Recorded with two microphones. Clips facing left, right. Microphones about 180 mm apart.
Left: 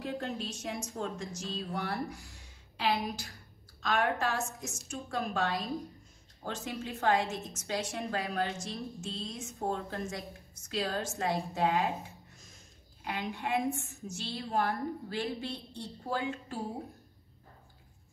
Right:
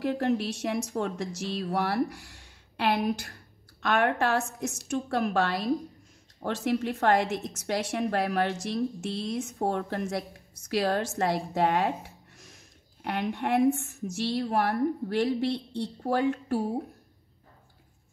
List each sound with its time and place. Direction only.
0.0 s a woman's voice: 75° right (ahead or behind)